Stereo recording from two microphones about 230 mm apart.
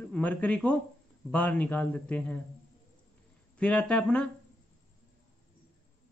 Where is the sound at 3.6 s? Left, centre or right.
Centre.